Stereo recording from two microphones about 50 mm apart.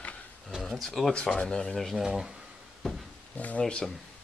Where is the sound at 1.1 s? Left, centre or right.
Left.